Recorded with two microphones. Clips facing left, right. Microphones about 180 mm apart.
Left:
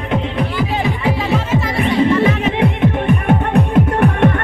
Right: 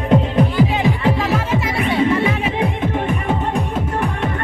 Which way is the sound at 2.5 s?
60° left (ahead or behind).